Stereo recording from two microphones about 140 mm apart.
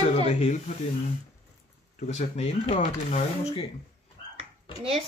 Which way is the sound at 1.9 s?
55° left (ahead or behind).